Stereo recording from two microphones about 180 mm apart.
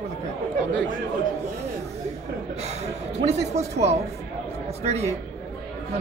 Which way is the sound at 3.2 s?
35° right (ahead or behind).